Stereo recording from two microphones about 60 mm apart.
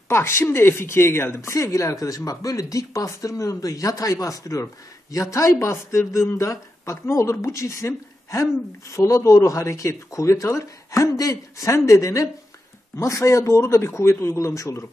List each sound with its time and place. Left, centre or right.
0.1 s speech: left
1.5 s speech: left
8.9 s speech: left